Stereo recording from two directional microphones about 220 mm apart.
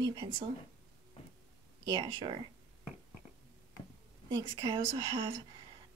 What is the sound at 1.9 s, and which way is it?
Speech, 20° right (ahead or behind).